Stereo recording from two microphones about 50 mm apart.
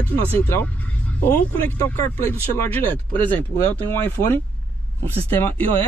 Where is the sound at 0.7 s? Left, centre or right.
Left.